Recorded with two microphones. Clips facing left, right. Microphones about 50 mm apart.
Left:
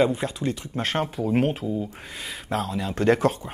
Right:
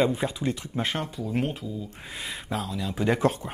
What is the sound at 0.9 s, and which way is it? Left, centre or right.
Speech, left.